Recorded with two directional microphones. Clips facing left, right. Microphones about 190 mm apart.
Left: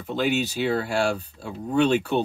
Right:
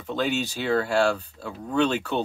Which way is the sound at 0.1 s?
10° left (ahead or behind).